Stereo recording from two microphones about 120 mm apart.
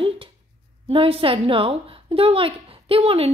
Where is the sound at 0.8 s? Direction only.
50° right (ahead or behind).